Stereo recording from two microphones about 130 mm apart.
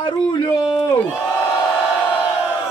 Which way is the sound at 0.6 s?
30° left (ahead or behind).